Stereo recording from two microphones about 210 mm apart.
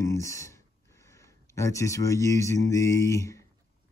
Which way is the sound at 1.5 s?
15° left (ahead or behind).